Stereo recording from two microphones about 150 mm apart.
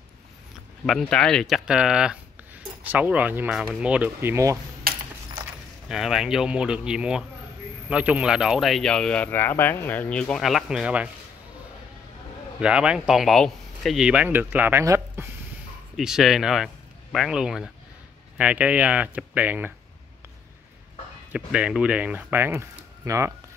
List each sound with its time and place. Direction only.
0.8 s speech: centre (ahead or behind); by 4.6 s 20° right (ahead or behind)
4.9 s coin: 85° right
5.9 s speech: centre (ahead or behind)
12.5 s speech: 5° right (ahead or behind)
16.0 s speech: 5° right (ahead or behind)
21.3 s speech: 5° right (ahead or behind)